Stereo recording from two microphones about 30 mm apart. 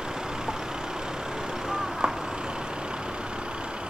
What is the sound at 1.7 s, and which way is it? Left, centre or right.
Vehicle, right.